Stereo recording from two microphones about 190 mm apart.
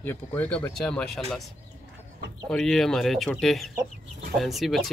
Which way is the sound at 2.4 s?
Centre (ahead or behind).